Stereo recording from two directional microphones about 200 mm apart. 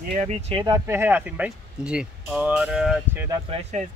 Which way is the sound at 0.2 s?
30° right (ahead or behind).